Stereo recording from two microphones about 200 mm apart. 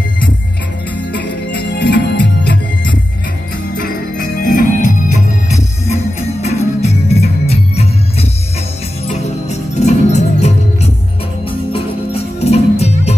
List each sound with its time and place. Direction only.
1.8 s music: 55° left (ahead or behind); by 13.1 s 30° left (ahead or behind)